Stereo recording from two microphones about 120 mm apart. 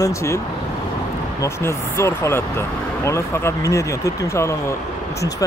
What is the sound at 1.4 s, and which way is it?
Speech, 20° left (ahead or behind).